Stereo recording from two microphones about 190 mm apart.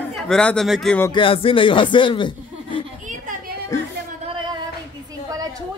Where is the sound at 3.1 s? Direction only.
45° right (ahead or behind).